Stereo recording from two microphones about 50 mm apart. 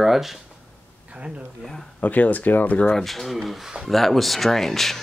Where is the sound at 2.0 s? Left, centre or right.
Left.